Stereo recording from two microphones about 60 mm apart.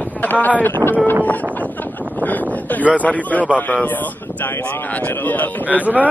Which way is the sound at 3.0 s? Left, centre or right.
Left.